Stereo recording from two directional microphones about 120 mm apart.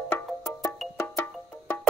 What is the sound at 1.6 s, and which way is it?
Music, 20° left (ahead or behind).